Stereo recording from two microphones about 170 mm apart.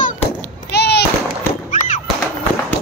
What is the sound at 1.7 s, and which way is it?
Fireworks, 45° left (ahead or behind).